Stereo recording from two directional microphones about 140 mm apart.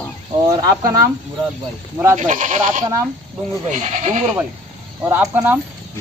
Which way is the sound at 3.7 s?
50° right (ahead or behind).